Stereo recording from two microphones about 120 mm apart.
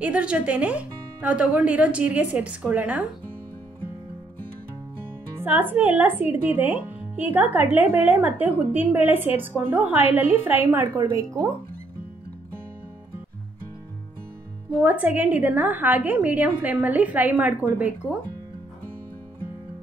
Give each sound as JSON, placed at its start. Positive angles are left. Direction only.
{"t": 0.0, "sound": "speech", "side_deg": -10}
{"t": 5.4, "sound": "speech", "side_deg": -15}
{"t": 14.7, "sound": "speech", "side_deg": -15}